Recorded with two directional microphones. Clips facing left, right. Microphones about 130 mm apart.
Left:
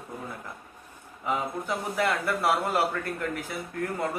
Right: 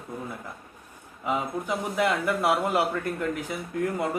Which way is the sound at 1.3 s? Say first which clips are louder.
Right 1 dB; 15° right (ahead or behind).